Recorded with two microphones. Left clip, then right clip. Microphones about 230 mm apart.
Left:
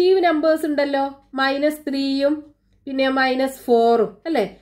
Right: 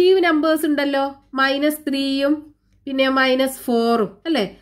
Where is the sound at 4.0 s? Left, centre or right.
Right.